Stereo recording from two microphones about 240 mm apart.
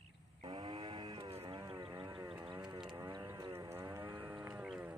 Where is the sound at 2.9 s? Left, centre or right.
Centre.